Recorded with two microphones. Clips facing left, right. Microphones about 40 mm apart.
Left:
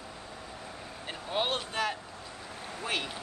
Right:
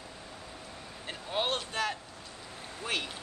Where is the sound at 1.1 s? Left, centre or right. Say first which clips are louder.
Left 1 dB; centre.